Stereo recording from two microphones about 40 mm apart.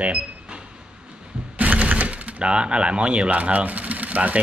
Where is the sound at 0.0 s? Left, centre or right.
Right.